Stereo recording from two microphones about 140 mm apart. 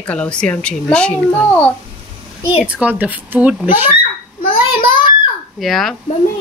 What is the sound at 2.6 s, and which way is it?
Speech, 10° right (ahead or behind).